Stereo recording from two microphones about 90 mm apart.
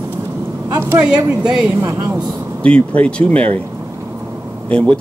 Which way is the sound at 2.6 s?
15° left (ahead or behind).